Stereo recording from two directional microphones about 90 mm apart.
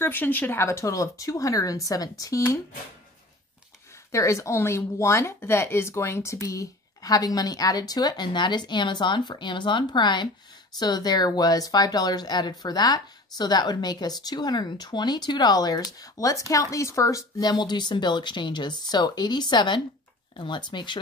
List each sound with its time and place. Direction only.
0.0 s speech: 20° left (ahead or behind)
4.1 s a woman's voice: 35° left (ahead or behind); by 21.0 s 60° left (ahead or behind)